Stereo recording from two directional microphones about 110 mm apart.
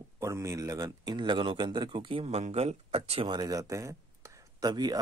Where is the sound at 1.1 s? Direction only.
45° right (ahead or behind).